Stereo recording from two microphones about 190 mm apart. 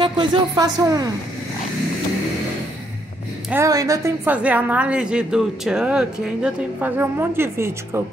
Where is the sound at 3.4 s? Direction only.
10° right (ahead or behind).